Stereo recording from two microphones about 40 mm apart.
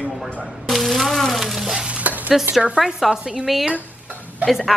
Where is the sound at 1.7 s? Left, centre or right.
Right.